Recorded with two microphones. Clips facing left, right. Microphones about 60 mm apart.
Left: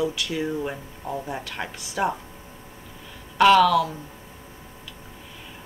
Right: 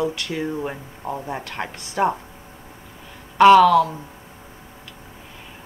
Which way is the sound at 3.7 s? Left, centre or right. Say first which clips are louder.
Right 5 dB; right.